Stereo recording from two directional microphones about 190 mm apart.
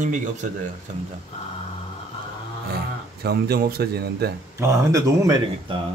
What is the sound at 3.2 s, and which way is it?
Speech, 55° right (ahead or behind).